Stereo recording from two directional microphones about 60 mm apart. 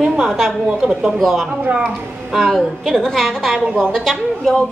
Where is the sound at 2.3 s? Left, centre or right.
Centre.